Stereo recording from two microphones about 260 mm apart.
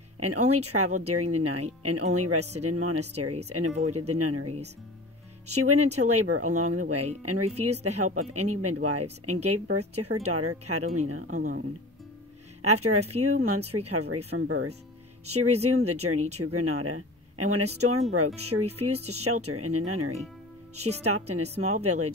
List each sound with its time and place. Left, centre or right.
0.2 s speech: right
12.6 s speech: right